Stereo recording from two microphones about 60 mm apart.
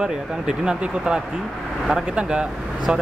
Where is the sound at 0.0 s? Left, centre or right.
Centre.